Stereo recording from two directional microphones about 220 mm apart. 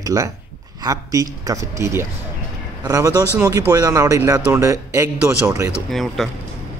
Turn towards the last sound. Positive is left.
turn(degrees=0)  # may be behind; listen again after turning